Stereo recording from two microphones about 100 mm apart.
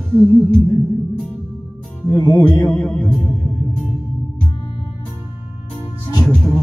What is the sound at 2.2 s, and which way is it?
Music, 40° left (ahead or behind).